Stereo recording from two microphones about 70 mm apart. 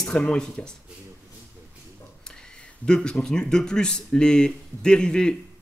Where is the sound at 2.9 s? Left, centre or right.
Centre.